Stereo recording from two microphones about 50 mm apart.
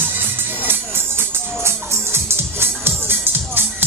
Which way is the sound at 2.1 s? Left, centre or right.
Right.